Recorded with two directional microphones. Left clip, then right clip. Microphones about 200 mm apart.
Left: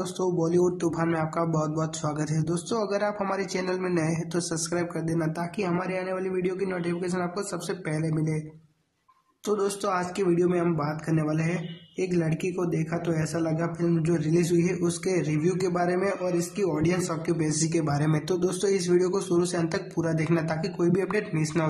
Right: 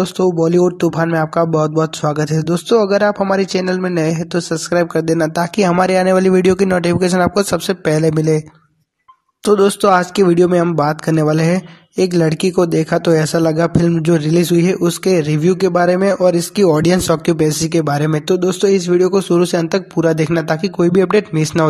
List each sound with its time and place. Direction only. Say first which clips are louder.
0.2 s speech: right 11 dB; 30° right (ahead or behind)
9.4 s speech: right 15 dB; 35° right (ahead or behind)